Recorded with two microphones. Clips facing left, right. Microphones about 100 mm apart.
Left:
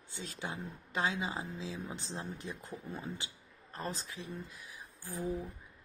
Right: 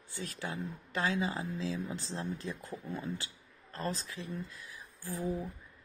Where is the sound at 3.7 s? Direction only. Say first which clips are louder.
Right 3 dB; 20° left (ahead or behind).